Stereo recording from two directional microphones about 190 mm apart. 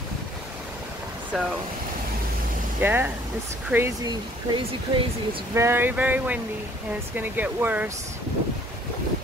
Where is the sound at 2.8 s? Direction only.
10° right (ahead or behind).